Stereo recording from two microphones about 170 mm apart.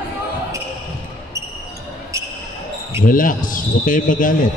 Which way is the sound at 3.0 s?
55° left (ahead or behind).